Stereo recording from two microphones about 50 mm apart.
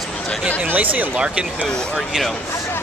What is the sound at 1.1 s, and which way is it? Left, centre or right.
Speech, right.